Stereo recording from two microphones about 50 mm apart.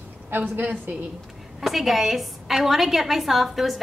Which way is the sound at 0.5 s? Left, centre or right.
Right.